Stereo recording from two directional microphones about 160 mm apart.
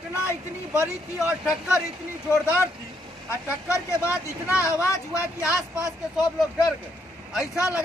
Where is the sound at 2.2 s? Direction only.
15° left (ahead or behind).